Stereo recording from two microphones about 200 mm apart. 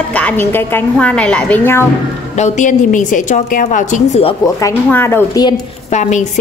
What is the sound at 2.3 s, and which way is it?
A woman's voice, 35° left (ahead or behind).